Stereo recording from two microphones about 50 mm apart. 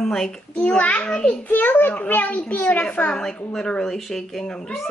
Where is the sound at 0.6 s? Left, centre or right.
Left.